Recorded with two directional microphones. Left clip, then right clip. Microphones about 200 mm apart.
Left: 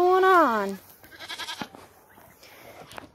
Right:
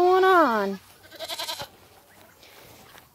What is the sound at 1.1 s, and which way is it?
Goat, 30° right (ahead or behind).